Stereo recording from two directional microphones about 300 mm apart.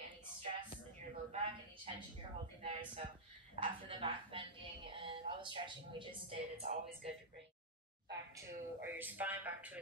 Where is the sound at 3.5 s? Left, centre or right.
Centre.